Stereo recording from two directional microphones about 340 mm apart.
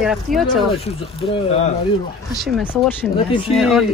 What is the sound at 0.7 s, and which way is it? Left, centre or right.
Speech, centre.